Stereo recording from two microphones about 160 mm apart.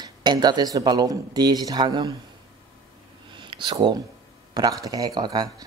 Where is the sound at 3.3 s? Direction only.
30° right (ahead or behind).